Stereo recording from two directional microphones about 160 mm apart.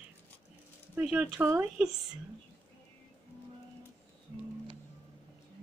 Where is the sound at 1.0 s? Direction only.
10° right (ahead or behind).